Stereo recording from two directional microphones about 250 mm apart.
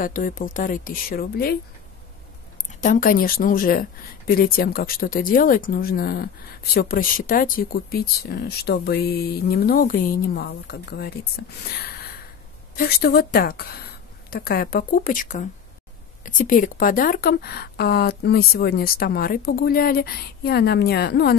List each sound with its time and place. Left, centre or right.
0.0 s speech: left
2.8 s speech: left